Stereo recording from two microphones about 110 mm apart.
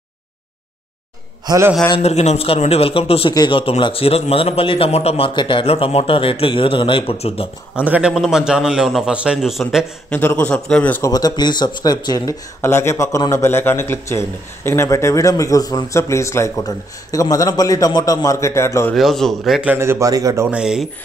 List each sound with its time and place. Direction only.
2.0 s a man's voice: 80° left
2.4 s a man's voice: 65° left (ahead or behind)
3.3 s speech: 50° left (ahead or behind)
3.8 s a man's voice: 60° left (ahead or behind)
5.3 s a man's voice: 50° left (ahead or behind)
7.8 s a man's voice: 15° right (ahead or behind)
10.0 s a man's voice: 15° left (ahead or behind)
11.0 s a man's voice: 35° left (ahead or behind)
12.6 s a man's voice: 25° left (ahead or behind)
18.9 s a man's voice: centre (ahead or behind)
19.7 s a man's voice: 20° right (ahead or behind)
20.5 s a man's voice: 5° right (ahead or behind)